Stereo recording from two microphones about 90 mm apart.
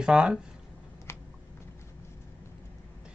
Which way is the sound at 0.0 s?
5° right (ahead or behind).